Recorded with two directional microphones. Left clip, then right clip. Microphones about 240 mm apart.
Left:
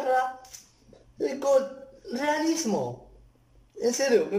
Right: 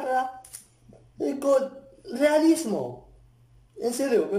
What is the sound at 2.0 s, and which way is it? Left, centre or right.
Speech, centre.